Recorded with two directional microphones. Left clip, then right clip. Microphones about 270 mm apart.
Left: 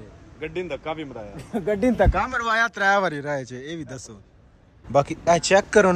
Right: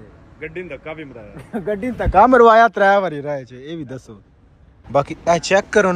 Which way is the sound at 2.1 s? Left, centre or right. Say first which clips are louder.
Right 13 dB; centre.